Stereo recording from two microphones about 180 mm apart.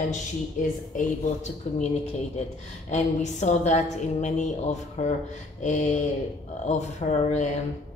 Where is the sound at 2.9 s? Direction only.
40° left (ahead or behind).